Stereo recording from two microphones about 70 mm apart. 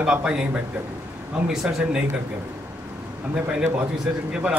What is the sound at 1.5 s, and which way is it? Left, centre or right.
Speech, centre.